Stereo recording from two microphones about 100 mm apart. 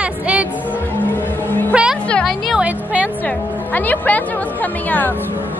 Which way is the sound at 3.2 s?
15° left (ahead or behind).